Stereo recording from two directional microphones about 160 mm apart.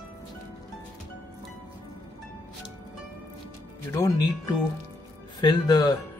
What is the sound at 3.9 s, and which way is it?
Speech, 25° left (ahead or behind).